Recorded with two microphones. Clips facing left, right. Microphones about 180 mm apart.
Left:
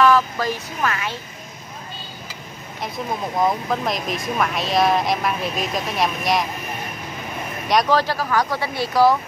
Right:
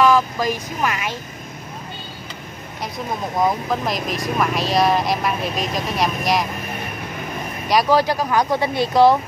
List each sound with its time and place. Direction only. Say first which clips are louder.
0.0 s speech: right 1 dB; 15° right (ahead or behind)
3.3 s speech: right 1 dB; centre (ahead or behind)
7.9 s speech: right 2 dB; 15° right (ahead or behind)